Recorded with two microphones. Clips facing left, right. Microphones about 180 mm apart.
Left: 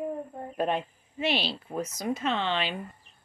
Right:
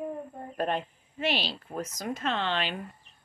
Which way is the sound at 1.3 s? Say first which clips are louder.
Left 1 dB; 10° right (ahead or behind).